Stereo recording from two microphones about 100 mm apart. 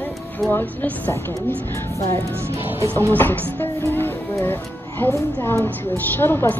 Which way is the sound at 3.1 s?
20° left (ahead or behind).